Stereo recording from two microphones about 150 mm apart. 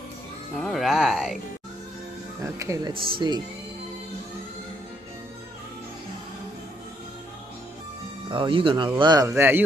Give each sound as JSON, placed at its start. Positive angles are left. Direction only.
{"t": 0.6, "sound": "speech", "side_deg": 0}
{"t": 2.4, "sound": "speech", "side_deg": -20}
{"t": 8.3, "sound": "speech", "side_deg": -35}
{"t": 9.3, "sound": "speech", "side_deg": -15}